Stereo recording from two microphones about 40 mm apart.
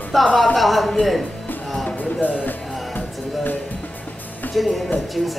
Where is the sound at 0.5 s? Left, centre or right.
Centre.